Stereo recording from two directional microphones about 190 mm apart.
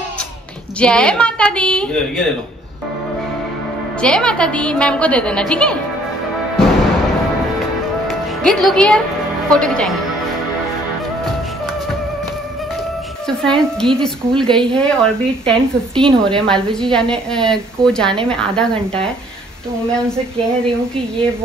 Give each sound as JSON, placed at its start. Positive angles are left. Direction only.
{"t": 0.7, "sound": "a woman's voice", "side_deg": 5}
{"t": 4.0, "sound": "a woman's voice", "side_deg": 5}
{"t": 8.5, "sound": "a woman's voice", "side_deg": 5}
{"t": 13.4, "sound": "a woman's voice", "side_deg": 5}